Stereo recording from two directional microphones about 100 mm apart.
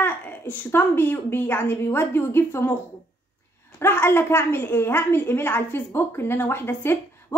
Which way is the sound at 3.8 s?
25° left (ahead or behind).